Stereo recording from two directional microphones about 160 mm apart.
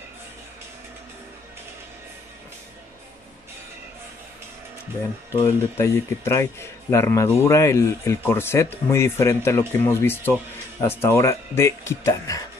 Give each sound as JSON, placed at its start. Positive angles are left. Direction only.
{"t": 5.4, "sound": "speech", "side_deg": 15}